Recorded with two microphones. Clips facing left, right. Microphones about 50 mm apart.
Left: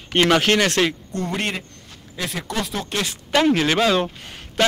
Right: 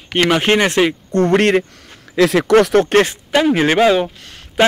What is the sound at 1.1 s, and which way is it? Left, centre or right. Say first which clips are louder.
Speech: right 12 dB; right.